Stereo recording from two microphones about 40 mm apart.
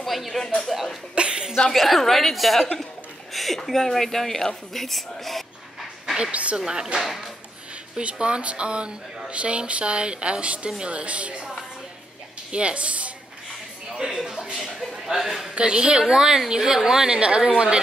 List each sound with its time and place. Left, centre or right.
0.0 s a sound: centre
0.7 s a woman's voice: centre
1.1 s a woman's voice: right
1.7 s a woman's voice: centre
6.3 s speech: right
6.6 s a woman's voice: centre
7.0 s a woman's voice: centre
8.0 s a woman's voice: right
12.4 s speech: right
13.9 s a sound: centre
15.0 s a man's voice: centre
15.5 s a woman's voice: right